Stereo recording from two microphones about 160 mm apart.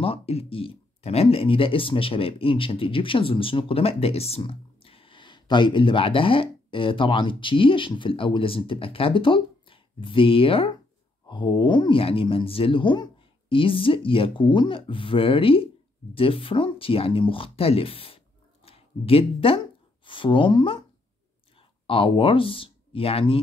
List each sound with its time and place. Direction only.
0.0 s speech: 35° left (ahead or behind)